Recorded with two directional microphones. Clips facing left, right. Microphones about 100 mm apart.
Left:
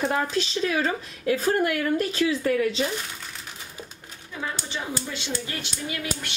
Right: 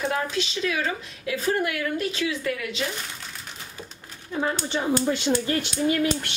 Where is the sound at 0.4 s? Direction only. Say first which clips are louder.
Left 2 dB; 40° left (ahead or behind).